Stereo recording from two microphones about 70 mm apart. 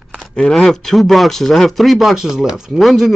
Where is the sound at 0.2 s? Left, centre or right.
Centre.